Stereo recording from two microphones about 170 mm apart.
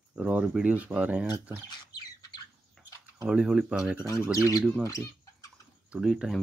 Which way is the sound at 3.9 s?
20° left (ahead or behind).